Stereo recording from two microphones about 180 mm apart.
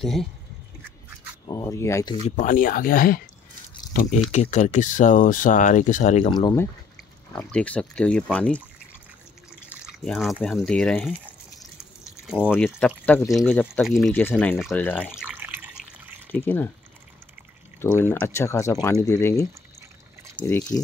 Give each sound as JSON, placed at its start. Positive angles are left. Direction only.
{"t": 0.0, "sound": "speech", "side_deg": 0}
{"t": 1.5, "sound": "speech", "side_deg": 20}
{"t": 2.2, "sound": "speech", "side_deg": 45}
{"t": 6.2, "sound": "speech", "side_deg": 25}
{"t": 7.3, "sound": "speech", "side_deg": 5}
{"t": 9.8, "sound": "speech", "side_deg": 0}
{"t": 12.6, "sound": "speech", "side_deg": 5}
{"t": 14.7, "sound": "speech", "side_deg": 10}
{"t": 15.0, "sound": "water", "side_deg": -5}
{"t": 16.3, "sound": "speech", "side_deg": 10}
{"t": 17.9, "sound": "speech", "side_deg": 10}